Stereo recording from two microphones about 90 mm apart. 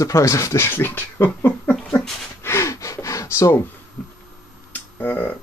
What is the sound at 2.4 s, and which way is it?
Gasp, 30° left (ahead or behind).